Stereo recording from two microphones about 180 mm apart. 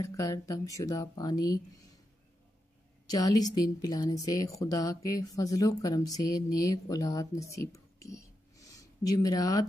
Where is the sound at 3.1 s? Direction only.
20° left (ahead or behind).